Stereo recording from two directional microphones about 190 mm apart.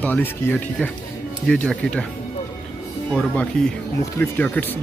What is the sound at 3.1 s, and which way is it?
Speech, 5° left (ahead or behind).